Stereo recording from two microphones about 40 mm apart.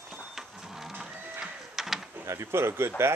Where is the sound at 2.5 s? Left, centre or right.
Right.